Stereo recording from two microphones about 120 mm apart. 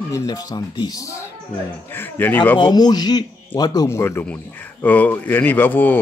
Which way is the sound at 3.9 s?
20° left (ahead or behind).